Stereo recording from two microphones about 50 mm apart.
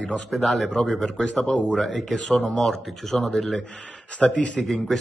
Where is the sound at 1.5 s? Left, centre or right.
Left.